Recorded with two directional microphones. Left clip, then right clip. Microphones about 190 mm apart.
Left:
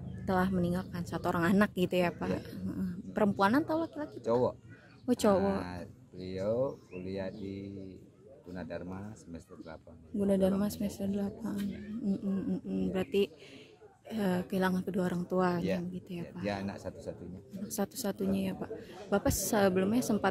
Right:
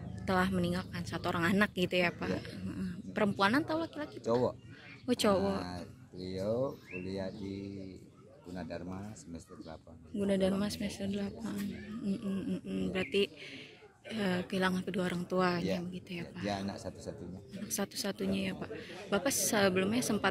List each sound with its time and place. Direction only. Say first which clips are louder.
0.2 s a woman's voice: even; 25° left (ahead or behind)
6.4 s speech: left 2 dB; 5° left (ahead or behind)
8.5 s a woman's voice: left 1 dB; 25° left (ahead or behind)
10.1 s a woman's voice: left 2 dB; 30° left (ahead or behind)